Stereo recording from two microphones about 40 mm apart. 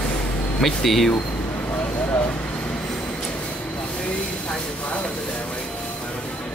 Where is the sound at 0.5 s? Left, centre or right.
Centre.